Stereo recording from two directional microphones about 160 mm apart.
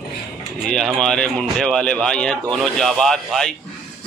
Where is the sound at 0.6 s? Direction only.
Centre (ahead or behind).